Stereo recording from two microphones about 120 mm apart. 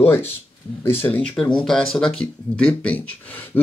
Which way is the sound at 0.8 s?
15° left (ahead or behind).